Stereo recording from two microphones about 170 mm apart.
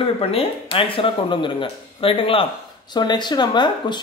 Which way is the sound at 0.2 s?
35° left (ahead or behind).